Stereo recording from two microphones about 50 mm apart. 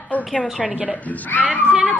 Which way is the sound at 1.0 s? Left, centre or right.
Left.